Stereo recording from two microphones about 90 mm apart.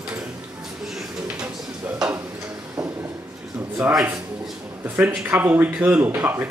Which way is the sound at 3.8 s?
15° right (ahead or behind).